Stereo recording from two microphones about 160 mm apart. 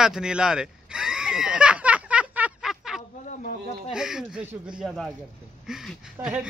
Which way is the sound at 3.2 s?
55° left (ahead or behind).